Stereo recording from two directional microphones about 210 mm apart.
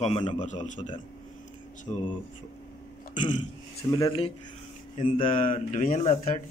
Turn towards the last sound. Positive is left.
turn(degrees=30)  # may be behind; listen again after turning